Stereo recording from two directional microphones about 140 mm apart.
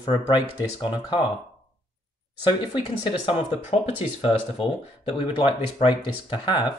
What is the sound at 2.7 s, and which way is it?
Speech, 40° left (ahead or behind).